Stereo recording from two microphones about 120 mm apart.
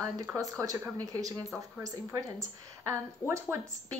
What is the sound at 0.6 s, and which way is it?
Speech, 30° right (ahead or behind).